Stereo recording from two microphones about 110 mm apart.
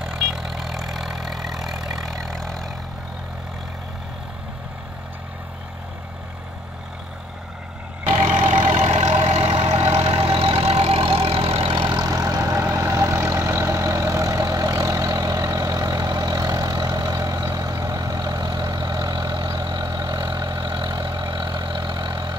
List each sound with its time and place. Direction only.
0.0 s vehicle: 5° right (ahead or behind)
8.1 s vehicle: 90° right; by 22.4 s 40° right (ahead or behind)